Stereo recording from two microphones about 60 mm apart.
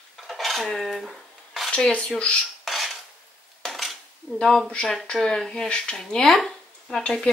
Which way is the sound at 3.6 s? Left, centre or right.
Centre.